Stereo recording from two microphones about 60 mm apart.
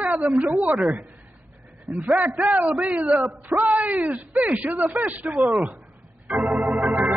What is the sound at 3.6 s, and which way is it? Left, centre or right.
Speech, right.